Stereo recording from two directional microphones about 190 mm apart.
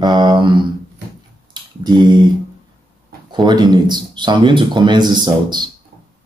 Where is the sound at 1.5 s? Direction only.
20° right (ahead or behind).